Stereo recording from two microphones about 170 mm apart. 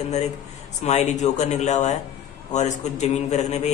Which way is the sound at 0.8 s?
40° left (ahead or behind).